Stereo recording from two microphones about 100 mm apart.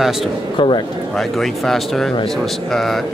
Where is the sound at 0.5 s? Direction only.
55° left (ahead or behind).